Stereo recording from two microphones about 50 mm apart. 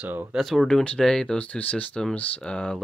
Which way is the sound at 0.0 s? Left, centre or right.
Right.